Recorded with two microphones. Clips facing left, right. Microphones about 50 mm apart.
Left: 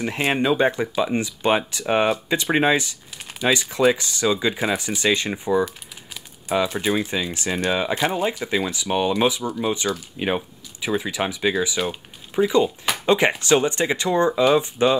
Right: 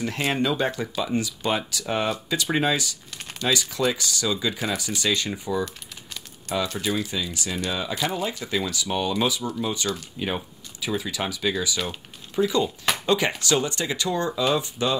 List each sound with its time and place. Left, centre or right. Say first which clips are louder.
0.0 s speech: left 3 dB; left
6.8 s speech: left 4 dB; left